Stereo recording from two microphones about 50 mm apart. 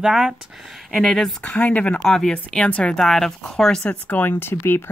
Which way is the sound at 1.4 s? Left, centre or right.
Left.